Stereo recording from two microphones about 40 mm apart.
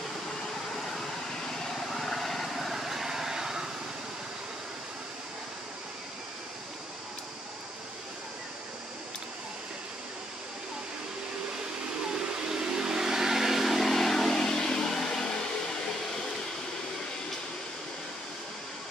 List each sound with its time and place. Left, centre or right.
1.6 s vehicle: centre
12.1 s vehicle: centre
15.0 s a sound: centre